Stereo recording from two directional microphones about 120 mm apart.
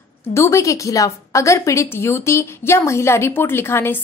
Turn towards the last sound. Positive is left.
turn(degrees=20)  # may be behind; listen again after turning